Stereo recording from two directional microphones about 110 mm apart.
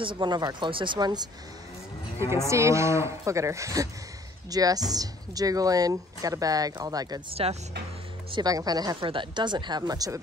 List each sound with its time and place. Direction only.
0.2 s speech: 45° right (ahead or behind)
2.2 s livestock: 25° right (ahead or behind)
4.5 s speech: 35° right (ahead or behind)
7.4 s speech: 65° right (ahead or behind)
8.3 s speech: 35° right (ahead or behind)
9.0 s speech: 50° right (ahead or behind); by 10.2 s 35° right (ahead or behind)